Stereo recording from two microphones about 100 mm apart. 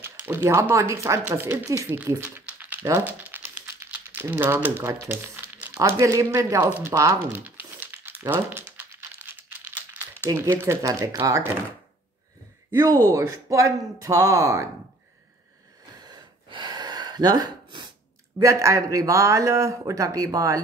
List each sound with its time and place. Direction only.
0.0 s speech: 20° right (ahead or behind)
2.2 s typing: 15° right (ahead or behind)
5.0 s crumpling: 20° right (ahead or behind)
5.8 s a man's voice: 30° right (ahead or behind)
7.3 s crumpling: 15° right (ahead or behind)
10.3 s speech: 25° right (ahead or behind)
12.7 s a man's voice: 35° right (ahead or behind)
16.0 s gasp: 45° right (ahead or behind)
18.4 s a man's voice: 30° right (ahead or behind)